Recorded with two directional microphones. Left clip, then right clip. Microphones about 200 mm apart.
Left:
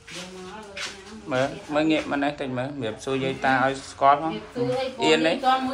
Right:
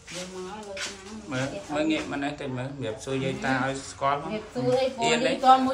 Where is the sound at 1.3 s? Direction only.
Centre (ahead or behind).